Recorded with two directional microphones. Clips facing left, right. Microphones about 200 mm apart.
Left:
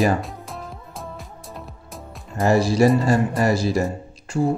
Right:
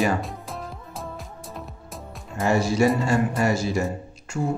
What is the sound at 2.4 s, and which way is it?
Speech, 35° left (ahead or behind).